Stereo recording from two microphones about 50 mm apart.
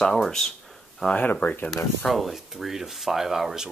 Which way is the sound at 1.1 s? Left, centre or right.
Left.